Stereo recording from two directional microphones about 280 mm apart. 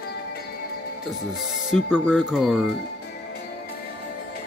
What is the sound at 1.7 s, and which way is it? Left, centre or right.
Speech, centre.